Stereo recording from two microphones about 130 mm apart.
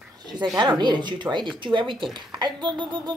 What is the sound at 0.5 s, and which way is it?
Speech, 35° right (ahead or behind).